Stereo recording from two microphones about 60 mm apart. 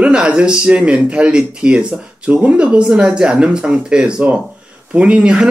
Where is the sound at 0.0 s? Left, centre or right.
Centre.